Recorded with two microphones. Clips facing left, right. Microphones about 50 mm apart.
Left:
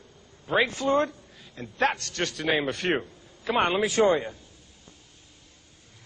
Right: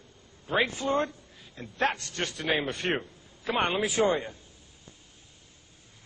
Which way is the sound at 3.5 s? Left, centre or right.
Left.